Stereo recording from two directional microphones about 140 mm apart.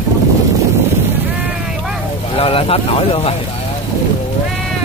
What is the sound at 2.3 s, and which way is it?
Speech, 45° left (ahead or behind).